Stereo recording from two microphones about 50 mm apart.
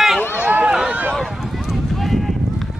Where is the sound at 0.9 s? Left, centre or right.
Right.